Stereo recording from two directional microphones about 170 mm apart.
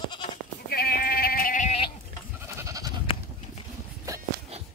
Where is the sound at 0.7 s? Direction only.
60° left (ahead or behind).